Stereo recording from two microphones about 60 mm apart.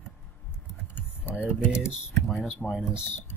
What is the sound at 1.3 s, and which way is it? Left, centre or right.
Speech, centre.